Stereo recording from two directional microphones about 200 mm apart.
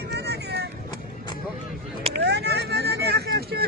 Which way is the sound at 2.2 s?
55° right (ahead or behind).